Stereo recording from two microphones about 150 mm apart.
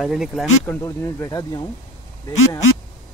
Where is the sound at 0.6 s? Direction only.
15° left (ahead or behind).